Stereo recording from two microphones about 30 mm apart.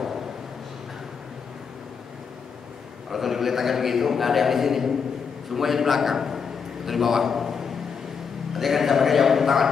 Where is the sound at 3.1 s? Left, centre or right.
Centre.